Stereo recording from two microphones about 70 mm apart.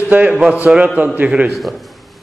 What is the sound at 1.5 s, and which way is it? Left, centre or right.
Speech, centre.